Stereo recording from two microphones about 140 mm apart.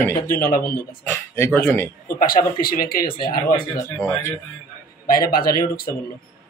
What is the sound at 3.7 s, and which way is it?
Speech, 20° left (ahead or behind).